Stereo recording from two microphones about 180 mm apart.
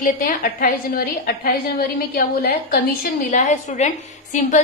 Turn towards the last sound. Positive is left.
turn(degrees=40)  # may be behind; listen again after turning